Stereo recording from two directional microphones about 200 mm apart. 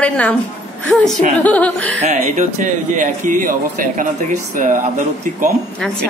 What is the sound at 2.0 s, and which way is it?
A man's voice, 35° right (ahead or behind).